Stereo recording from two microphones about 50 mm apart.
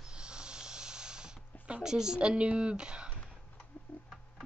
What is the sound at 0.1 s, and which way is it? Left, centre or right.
Snake, centre.